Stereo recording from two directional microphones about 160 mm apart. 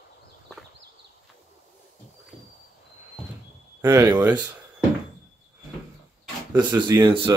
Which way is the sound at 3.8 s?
15° right (ahead or behind).